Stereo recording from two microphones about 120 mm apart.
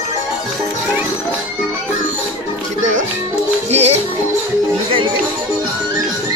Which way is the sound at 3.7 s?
65° right (ahead or behind).